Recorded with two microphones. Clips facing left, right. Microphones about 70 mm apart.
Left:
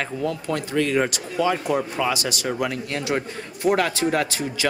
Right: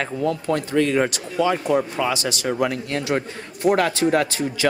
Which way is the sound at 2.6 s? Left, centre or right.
Right.